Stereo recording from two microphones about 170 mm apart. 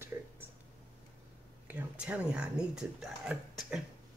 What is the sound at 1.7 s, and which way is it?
Speech, 10° right (ahead or behind).